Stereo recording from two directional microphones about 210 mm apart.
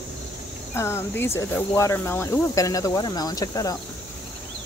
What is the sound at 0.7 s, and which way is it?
Speech, 10° left (ahead or behind).